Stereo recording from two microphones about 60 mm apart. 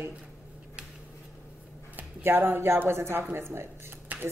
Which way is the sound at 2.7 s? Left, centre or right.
Right.